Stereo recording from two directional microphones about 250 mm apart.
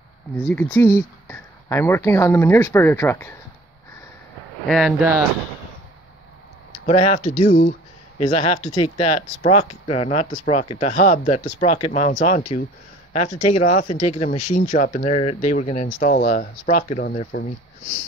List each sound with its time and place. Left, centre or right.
0.4 s speech: centre
4.6 s speech: centre
6.9 s speech: left